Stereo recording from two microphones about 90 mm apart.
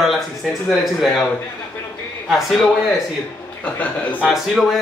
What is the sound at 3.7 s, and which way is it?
Speech, 15° left (ahead or behind).